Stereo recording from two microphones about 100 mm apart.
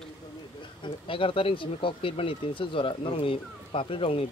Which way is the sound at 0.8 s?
65° left (ahead or behind).